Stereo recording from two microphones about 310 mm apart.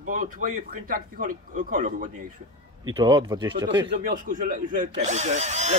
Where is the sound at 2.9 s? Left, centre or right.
Centre.